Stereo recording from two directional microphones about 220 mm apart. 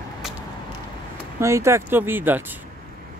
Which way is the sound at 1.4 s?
15° right (ahead or behind).